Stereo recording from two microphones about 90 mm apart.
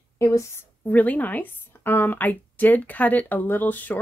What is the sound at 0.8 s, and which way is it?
A woman's voice, 15° left (ahead or behind).